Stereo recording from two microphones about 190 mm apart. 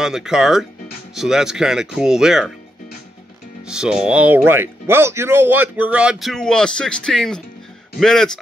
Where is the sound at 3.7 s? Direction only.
5° right (ahead or behind).